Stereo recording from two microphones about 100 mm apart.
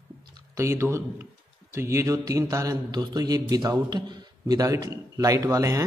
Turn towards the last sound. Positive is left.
turn(degrees=-30)  # may be behind; listen again after turning